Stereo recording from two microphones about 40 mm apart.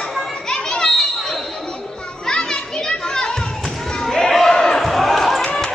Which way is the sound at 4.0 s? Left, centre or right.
Centre.